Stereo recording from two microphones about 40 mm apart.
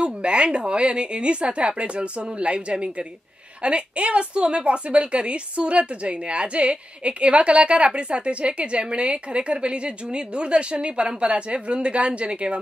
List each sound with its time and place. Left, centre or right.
0.0 s a woman's voice: right